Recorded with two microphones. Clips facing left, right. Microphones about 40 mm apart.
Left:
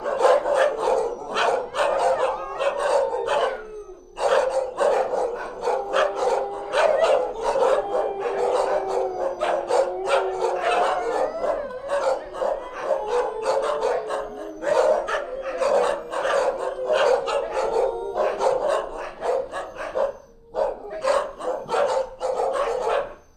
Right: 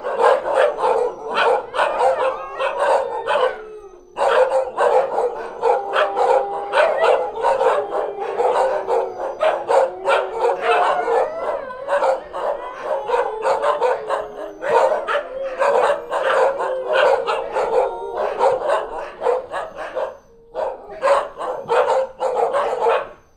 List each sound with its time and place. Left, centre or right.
0.0 s dog: right